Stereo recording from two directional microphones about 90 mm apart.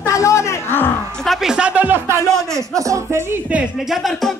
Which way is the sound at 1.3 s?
10° right (ahead or behind).